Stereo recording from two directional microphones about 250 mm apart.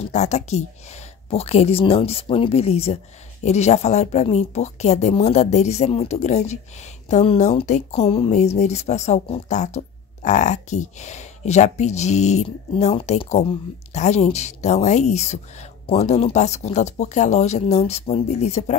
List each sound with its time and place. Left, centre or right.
0.0 s speech: left